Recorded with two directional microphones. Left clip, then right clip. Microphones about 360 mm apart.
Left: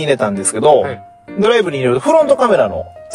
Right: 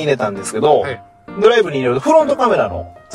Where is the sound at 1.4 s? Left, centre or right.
Left.